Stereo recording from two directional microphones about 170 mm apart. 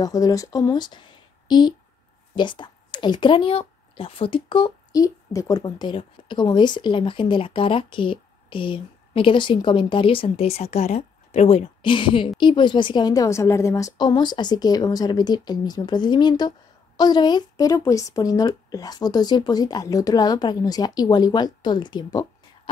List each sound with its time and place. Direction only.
0.0 s a woman's voice: 20° left (ahead or behind)